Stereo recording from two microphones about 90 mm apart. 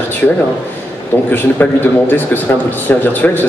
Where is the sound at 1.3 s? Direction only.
20° left (ahead or behind).